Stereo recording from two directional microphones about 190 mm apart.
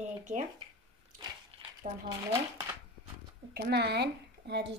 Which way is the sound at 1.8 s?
35° right (ahead or behind).